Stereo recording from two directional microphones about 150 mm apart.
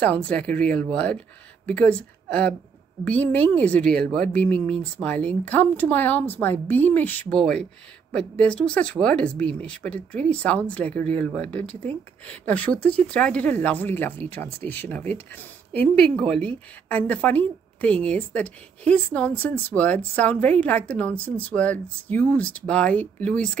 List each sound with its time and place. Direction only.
0.0 s speech: 10° left (ahead or behind)